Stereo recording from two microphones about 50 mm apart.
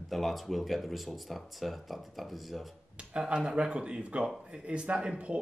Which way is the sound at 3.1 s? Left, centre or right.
Centre.